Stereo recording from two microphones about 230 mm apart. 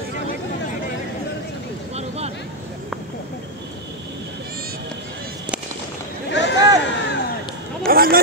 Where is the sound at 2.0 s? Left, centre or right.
Right.